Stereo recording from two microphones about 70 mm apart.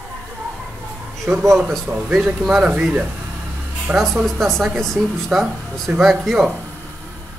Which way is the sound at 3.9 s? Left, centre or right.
Right.